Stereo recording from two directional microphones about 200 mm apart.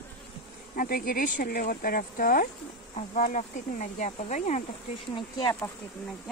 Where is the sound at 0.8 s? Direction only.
45° left (ahead or behind).